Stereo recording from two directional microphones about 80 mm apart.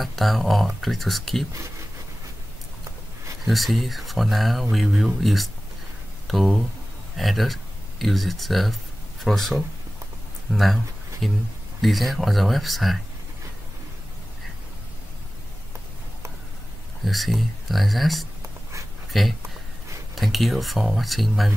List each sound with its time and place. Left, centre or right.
0.0 s speech: centre
3.4 s speech: centre
17.0 s speech: centre
18.4 s writing: right
19.1 s speech: centre